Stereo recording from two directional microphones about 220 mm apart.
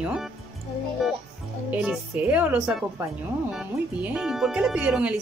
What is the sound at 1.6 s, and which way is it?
Speech, 5° right (ahead or behind).